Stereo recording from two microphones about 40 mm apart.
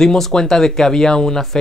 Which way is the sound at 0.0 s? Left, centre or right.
Centre.